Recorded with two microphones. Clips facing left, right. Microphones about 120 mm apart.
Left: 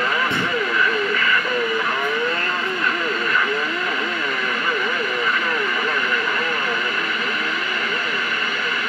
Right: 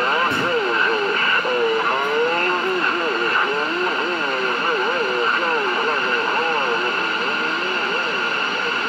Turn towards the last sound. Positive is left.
turn(degrees=-35)  # may be behind; listen again after turning